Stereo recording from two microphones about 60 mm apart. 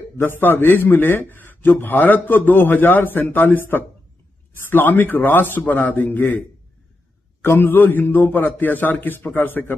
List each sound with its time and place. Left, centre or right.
0.2 s a man's voice: left
7.4 s a man's voice: left